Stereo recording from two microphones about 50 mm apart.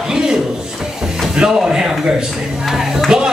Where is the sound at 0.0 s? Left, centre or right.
Centre.